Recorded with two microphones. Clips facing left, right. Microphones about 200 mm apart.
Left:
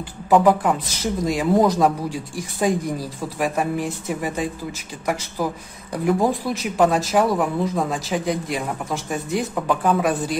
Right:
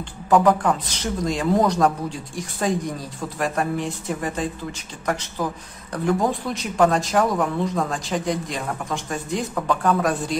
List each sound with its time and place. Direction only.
0.3 s speech: 5° left (ahead or behind)